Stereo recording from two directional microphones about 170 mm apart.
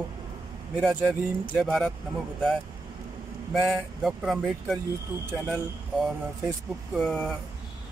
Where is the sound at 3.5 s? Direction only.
Centre (ahead or behind).